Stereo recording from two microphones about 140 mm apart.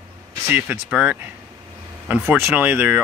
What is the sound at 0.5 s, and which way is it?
Speech, 10° right (ahead or behind).